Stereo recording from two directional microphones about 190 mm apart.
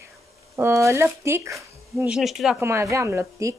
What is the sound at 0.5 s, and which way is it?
Speech, 15° right (ahead or behind).